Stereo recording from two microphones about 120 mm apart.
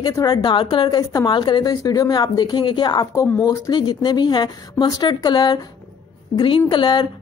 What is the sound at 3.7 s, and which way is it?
Speech, 40° left (ahead or behind).